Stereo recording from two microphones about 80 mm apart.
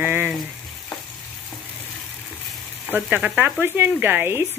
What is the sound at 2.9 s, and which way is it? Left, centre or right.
Speech, right.